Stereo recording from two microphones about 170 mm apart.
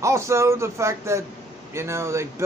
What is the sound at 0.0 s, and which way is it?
Speech, 15° right (ahead or behind).